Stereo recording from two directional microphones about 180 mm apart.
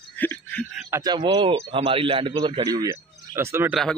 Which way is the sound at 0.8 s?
20° right (ahead or behind).